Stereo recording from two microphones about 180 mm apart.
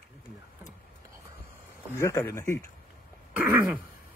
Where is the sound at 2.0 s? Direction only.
15° left (ahead or behind).